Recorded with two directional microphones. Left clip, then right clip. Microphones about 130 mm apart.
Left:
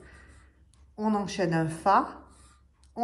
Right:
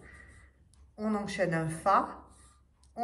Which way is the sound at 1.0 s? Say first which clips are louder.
Left 3 dB; 20° left (ahead or behind).